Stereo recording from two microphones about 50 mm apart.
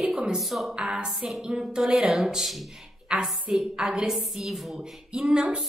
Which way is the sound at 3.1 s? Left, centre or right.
Centre.